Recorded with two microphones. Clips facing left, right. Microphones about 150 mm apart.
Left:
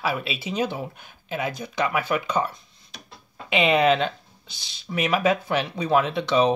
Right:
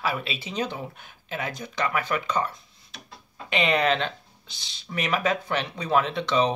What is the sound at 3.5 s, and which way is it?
Speech, 10° left (ahead or behind).